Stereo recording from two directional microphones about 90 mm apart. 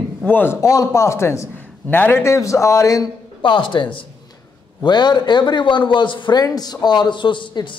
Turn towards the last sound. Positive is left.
turn(degrees=60)  # may be behind; listen again after turning